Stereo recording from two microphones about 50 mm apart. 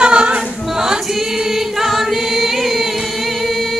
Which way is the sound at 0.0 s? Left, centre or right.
Right.